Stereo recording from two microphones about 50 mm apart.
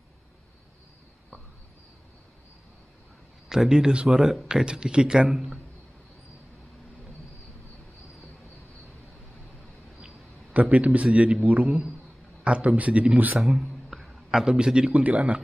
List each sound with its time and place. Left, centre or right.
3.4 s speech: centre
9.9 s a sound: right
11.4 s a man's voice: right
13.4 s speech: centre
14.9 s a man's voice: right